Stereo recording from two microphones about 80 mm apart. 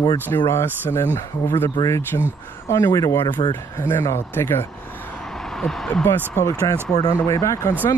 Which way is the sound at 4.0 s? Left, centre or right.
Left.